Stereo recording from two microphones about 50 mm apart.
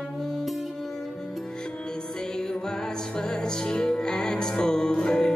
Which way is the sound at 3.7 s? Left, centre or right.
Centre.